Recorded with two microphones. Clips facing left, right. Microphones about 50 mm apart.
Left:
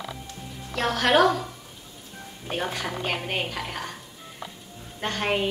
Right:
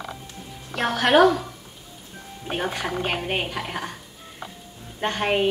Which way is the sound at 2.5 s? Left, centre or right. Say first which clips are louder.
Right 3 dB; centre.